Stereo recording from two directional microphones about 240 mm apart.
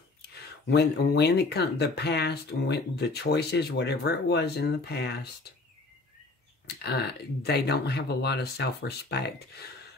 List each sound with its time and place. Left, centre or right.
0.3 s speech: left
6.8 s speech: left